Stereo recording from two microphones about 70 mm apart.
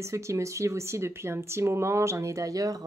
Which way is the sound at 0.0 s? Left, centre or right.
Right.